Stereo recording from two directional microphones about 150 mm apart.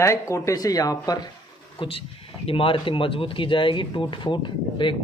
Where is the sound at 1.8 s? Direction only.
40° left (ahead or behind).